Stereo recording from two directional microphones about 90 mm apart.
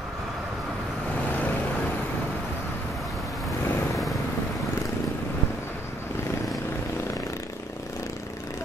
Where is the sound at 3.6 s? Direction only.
30° left (ahead or behind).